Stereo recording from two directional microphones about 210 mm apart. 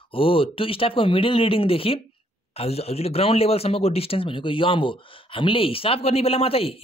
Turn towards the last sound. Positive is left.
turn(degrees=25)  # may be behind; listen again after turning